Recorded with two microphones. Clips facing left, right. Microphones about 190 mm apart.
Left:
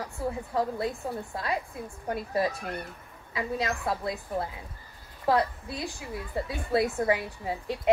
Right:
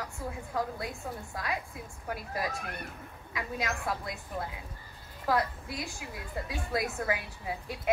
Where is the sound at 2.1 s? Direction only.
35° left (ahead or behind).